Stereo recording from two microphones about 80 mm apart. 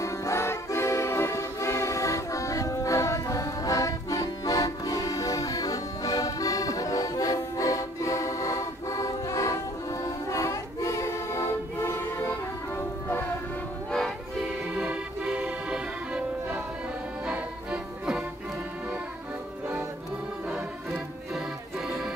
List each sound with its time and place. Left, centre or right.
0.0 s music: left
14.8 s accordion: centre
17.3 s music: centre
21.3 s music: centre